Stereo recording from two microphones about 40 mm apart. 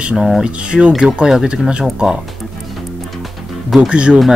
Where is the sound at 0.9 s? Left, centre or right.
Centre.